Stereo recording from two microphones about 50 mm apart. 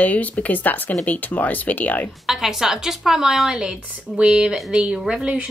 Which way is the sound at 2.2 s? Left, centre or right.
Centre.